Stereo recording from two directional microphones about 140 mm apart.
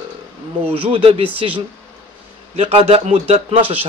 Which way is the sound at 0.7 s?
40° right (ahead or behind).